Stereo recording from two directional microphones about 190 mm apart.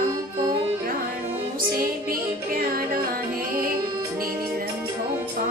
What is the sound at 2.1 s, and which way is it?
Music, 50° right (ahead or behind).